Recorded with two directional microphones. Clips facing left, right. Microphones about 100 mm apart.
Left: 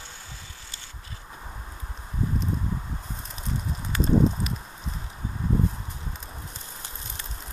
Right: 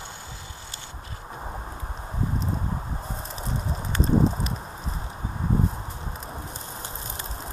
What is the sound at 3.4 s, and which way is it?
Clip-clop, 35° right (ahead or behind).